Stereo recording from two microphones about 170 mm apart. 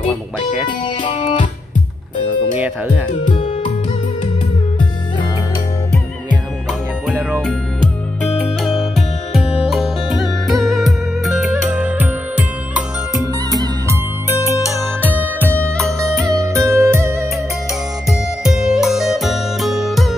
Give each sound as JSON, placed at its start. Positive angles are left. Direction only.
{"t": 0.7, "sound": "music", "side_deg": 30}
{"t": 3.3, "sound": "music", "side_deg": 35}
{"t": 7.2, "sound": "music", "side_deg": -15}
{"t": 8.4, "sound": "music", "side_deg": 0}
{"t": 13.2, "sound": "music", "side_deg": -20}
{"t": 14.3, "sound": "music", "side_deg": 20}
{"t": 15.0, "sound": "music", "side_deg": -10}
{"t": 18.4, "sound": "music", "side_deg": -5}